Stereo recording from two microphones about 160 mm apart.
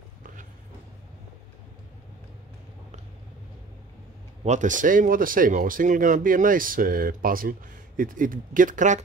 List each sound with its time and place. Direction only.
4.5 s speech: 50° right (ahead or behind)